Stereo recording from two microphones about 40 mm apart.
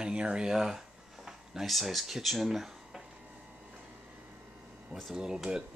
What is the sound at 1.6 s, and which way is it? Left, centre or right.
Speech, centre.